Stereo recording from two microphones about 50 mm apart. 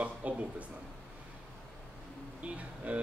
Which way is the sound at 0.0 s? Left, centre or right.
Right.